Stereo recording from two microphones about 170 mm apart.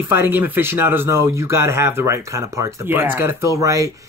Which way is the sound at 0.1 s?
10° right (ahead or behind).